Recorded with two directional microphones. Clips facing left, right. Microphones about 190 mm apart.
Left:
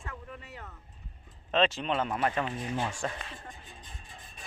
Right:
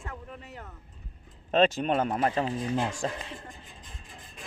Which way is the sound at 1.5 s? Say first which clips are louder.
Right 4 dB; 45° right (ahead or behind).